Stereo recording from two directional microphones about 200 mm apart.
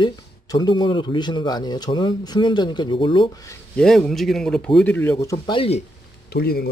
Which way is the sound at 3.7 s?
5° left (ahead or behind).